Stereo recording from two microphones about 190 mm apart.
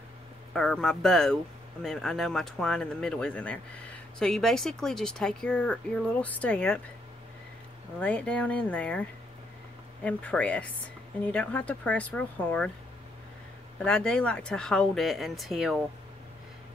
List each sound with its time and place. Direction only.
0.5 s speech: centre (ahead or behind)
8.0 s speech: 5° left (ahead or behind)
13.7 s speech: 5° left (ahead or behind)